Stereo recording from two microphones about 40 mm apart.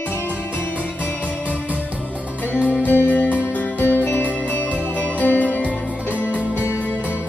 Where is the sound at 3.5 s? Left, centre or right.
Left.